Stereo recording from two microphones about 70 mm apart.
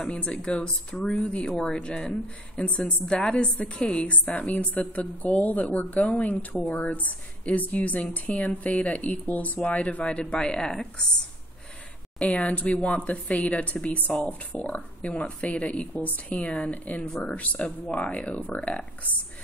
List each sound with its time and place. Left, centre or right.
0.0 s a woman's voice: centre
12.2 s a woman's voice: centre